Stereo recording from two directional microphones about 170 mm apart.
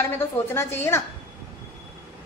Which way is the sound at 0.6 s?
15° left (ahead or behind).